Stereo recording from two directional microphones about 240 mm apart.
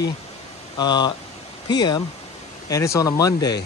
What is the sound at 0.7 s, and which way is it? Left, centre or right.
Speech, centre.